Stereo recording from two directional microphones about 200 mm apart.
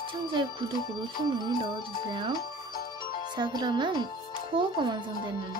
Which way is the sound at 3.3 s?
20° right (ahead or behind).